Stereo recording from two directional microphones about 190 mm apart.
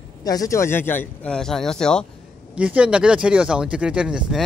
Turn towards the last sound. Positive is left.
turn(degrees=-5)  # may be behind; listen again after turning